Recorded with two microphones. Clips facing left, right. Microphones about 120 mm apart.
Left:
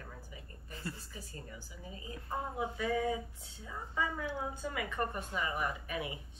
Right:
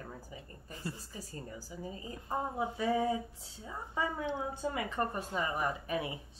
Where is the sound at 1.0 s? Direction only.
35° right (ahead or behind).